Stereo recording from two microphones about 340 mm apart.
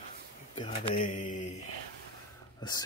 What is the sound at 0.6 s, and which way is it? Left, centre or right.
Speech, left.